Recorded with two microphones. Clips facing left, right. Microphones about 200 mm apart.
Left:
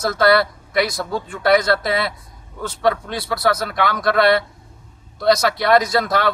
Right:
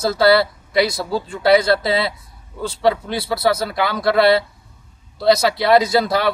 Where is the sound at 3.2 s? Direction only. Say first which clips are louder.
Right 1 dB; 25° right (ahead or behind).